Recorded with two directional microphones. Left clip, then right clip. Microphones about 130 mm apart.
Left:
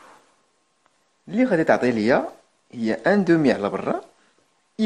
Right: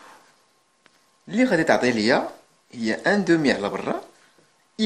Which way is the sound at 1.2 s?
30° left (ahead or behind).